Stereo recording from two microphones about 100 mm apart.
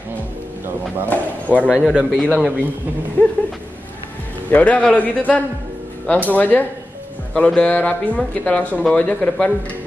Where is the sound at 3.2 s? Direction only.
20° left (ahead or behind).